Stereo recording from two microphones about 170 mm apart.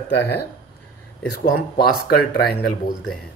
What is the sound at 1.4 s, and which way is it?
Speech, 65° left (ahead or behind).